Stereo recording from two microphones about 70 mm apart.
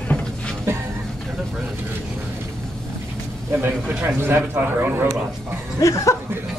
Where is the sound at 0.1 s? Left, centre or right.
Centre.